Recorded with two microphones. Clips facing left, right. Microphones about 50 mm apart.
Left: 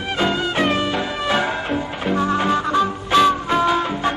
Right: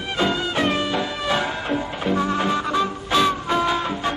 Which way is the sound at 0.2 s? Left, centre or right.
Centre.